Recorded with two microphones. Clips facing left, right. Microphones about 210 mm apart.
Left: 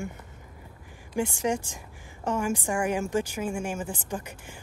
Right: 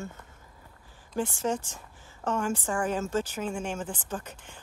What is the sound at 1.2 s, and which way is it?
A woman's voice, 15° left (ahead or behind).